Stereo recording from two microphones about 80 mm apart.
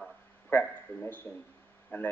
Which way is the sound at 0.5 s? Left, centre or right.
Left.